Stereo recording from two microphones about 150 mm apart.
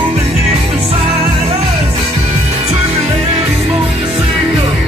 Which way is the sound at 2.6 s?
40° right (ahead or behind).